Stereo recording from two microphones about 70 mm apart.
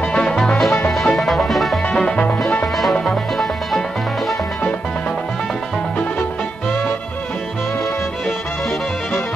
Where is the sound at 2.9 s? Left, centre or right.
Centre.